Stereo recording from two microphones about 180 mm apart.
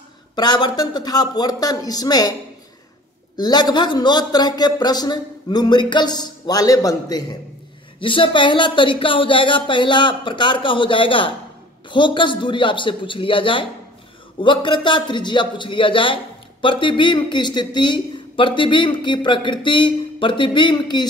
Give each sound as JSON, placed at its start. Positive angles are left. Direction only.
{"t": 0.4, "sound": "speech", "side_deg": 25}
{"t": 3.3, "sound": "speech", "side_deg": 25}